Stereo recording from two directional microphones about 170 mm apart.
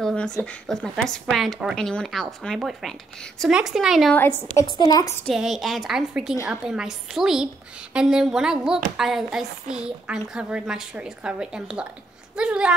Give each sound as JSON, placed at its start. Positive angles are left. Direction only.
{"t": 0.0, "sound": "a sound", "side_deg": 5}
{"t": 0.4, "sound": "a woman's voice", "side_deg": 5}
{"t": 4.7, "sound": "a woman's voice", "side_deg": 25}
{"t": 5.2, "sound": "a woman's voice", "side_deg": 0}